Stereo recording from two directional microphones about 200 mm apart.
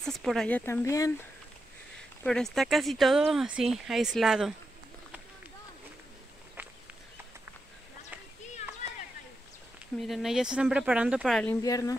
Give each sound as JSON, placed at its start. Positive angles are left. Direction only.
{"t": 0.0, "sound": "speech", "side_deg": 0}
{"t": 2.2, "sound": "speech", "side_deg": 0}
{"t": 9.9, "sound": "speech", "side_deg": 0}
{"t": 11.6, "sound": "speech", "side_deg": 15}